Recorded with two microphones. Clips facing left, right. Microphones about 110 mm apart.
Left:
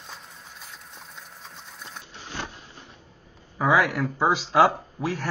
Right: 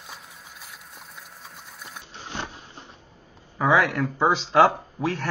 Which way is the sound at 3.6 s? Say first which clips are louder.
Right 1 dB; centre (ahead or behind).